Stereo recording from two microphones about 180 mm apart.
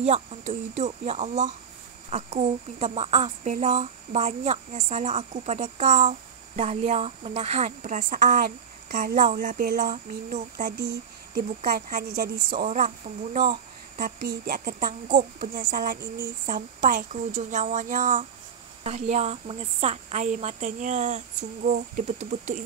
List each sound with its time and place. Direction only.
0.0 s speech: 35° right (ahead or behind)
10.8 s speech: 60° right (ahead or behind); by 13.4 s 40° right (ahead or behind)
13.9 s speech: 55° right (ahead or behind)